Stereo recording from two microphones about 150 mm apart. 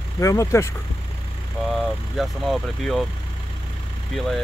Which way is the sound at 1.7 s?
Centre (ahead or behind).